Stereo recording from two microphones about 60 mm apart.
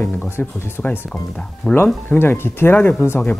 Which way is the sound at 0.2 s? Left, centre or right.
Left.